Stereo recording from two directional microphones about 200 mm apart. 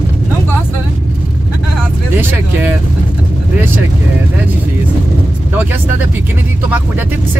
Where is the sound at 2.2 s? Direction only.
10° right (ahead or behind).